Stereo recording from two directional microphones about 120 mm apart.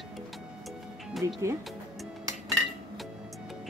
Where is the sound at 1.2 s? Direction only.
25° right (ahead or behind).